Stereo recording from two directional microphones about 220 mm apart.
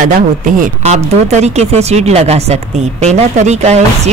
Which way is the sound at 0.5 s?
30° right (ahead or behind).